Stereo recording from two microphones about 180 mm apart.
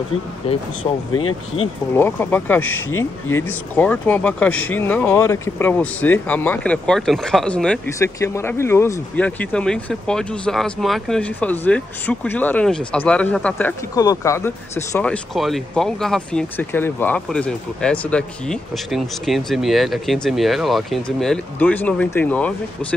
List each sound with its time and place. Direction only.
0.8 s speech: 20° left (ahead or behind)